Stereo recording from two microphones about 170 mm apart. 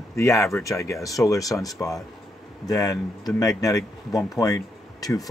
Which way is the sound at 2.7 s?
20° left (ahead or behind).